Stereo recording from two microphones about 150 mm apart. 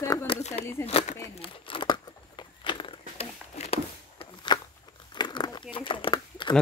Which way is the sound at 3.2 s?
45° left (ahead or behind).